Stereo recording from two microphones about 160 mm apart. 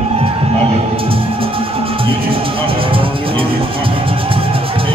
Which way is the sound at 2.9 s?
35° right (ahead or behind).